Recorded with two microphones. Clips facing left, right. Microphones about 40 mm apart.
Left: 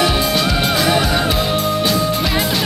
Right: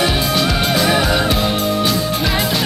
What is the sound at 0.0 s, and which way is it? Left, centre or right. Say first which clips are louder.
Music: left 1 dB; centre.